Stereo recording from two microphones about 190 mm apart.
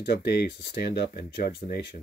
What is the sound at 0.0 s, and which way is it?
Speech, 55° left (ahead or behind).